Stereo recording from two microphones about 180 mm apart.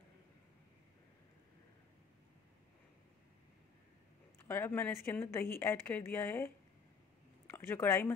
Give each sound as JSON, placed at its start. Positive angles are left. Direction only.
{"t": 4.5, "sound": "a woman's voice", "side_deg": 10}